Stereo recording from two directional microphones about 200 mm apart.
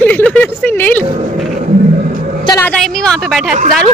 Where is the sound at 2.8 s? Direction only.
Centre (ahead or behind).